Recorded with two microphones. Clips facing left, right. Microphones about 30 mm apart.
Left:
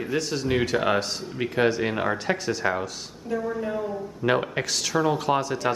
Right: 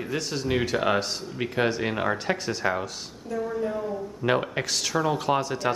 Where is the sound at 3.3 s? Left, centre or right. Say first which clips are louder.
Left 1 dB; centre.